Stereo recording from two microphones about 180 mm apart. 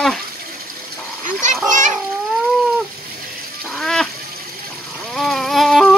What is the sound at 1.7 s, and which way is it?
Children playing, 45° right (ahead or behind).